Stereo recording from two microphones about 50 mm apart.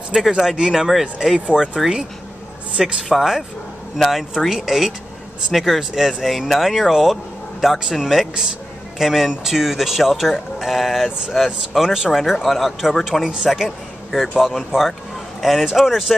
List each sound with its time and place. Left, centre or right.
0.2 s speech: centre
1.5 s speech: centre
2.8 s speech: centre